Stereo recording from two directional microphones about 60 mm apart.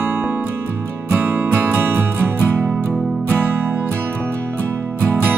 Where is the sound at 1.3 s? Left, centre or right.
Right.